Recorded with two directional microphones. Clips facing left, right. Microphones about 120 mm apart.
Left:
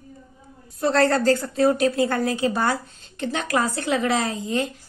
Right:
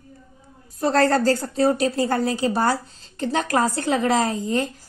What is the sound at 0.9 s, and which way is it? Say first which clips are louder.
A woman's voice: even; 40° right (ahead or behind).